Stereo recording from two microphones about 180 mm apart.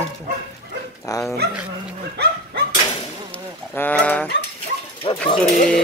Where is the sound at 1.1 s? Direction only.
20° left (ahead or behind).